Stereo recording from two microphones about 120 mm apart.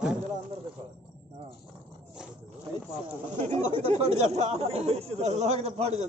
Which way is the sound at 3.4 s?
70° right (ahead or behind).